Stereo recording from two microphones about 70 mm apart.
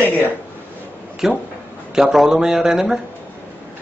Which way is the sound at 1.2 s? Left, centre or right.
Centre.